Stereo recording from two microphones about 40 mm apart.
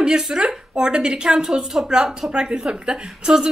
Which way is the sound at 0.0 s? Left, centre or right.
Right.